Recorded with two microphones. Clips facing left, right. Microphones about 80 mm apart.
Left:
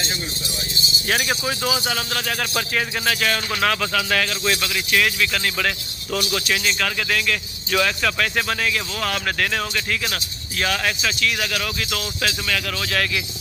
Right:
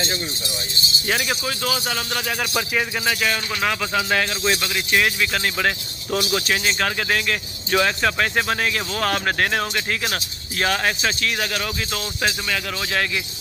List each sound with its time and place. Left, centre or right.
1.0 s speech: centre
3.9 s speech: right
12.2 s speech: right